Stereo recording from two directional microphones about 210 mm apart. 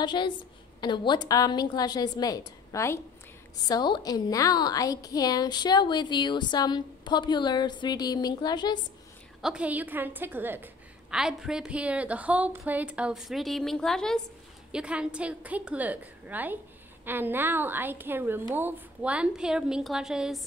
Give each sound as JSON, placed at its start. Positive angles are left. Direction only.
{"t": 0.0, "sound": "a woman's voice", "side_deg": 20}
{"t": 9.4, "sound": "a woman's voice", "side_deg": -5}